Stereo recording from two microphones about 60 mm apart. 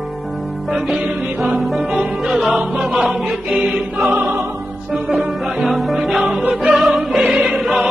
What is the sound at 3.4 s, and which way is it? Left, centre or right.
Music, centre.